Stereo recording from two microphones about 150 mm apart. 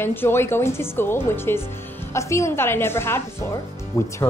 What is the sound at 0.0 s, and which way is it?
Speech, 15° left (ahead or behind).